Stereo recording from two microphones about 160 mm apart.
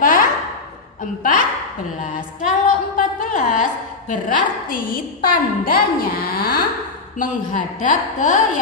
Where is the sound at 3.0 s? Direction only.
55° left (ahead or behind).